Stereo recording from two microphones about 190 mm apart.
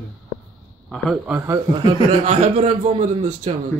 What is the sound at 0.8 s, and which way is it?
Speech, centre (ahead or behind).